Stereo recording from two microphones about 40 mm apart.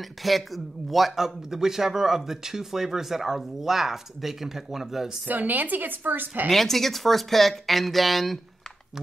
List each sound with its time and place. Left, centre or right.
0.2 s speech: centre
5.3 s a woman's voice: right
6.5 s speech: centre